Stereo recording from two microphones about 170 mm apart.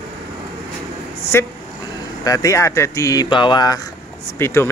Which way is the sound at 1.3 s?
15° left (ahead or behind).